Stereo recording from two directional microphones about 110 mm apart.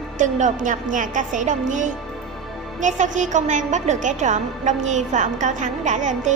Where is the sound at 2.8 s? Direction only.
90° right.